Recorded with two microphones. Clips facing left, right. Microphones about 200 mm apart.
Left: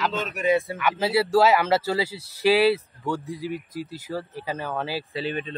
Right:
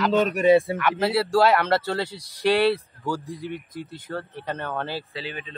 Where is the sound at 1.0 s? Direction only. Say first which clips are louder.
Left 1 dB; 5° left (ahead or behind).